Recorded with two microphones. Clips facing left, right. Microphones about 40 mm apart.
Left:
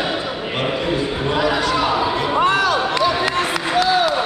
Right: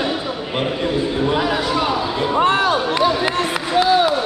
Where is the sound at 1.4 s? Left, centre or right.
Centre.